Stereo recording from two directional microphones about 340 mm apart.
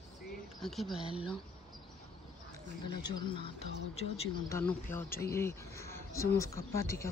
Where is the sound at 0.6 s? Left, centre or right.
Centre.